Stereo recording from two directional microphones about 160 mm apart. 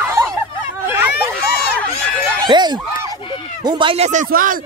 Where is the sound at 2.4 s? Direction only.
25° right (ahead or behind).